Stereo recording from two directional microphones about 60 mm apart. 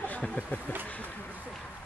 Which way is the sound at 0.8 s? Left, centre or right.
Left.